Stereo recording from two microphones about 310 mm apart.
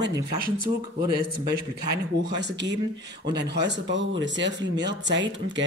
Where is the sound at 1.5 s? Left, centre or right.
Right.